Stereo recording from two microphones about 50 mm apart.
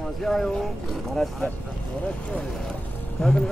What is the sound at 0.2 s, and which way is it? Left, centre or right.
Speech, centre.